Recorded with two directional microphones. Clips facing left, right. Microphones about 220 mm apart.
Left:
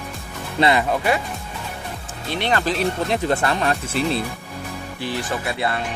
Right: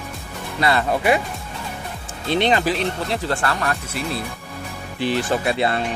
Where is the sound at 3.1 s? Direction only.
20° left (ahead or behind).